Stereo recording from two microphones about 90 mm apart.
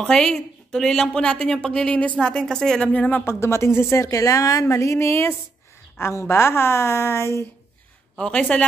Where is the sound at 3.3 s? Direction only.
30° left (ahead or behind).